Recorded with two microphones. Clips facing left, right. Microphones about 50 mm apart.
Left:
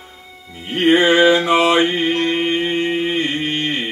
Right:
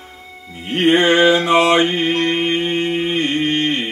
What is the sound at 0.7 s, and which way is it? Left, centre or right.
Music, right.